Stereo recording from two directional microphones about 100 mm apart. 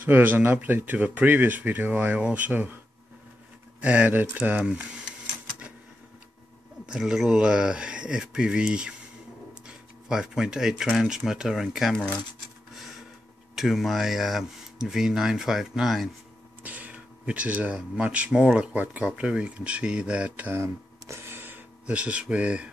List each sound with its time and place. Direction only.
0.0 s speech: 20° right (ahead or behind)
3.8 s speech: 15° right (ahead or behind)
6.9 s speech: 5° right (ahead or behind)
13.6 s speech: centre (ahead or behind)
16.6 s speech: 15° right (ahead or behind)
20.5 s a sound: 25° right (ahead or behind)